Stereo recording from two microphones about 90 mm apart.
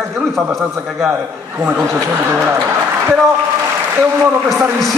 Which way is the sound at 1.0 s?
30° right (ahead or behind).